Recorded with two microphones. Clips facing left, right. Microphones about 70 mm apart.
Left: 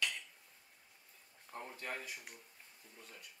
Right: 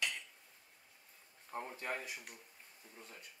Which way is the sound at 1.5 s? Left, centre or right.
Right.